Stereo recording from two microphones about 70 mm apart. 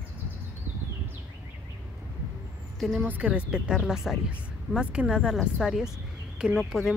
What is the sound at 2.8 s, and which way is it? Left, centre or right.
Speech, centre.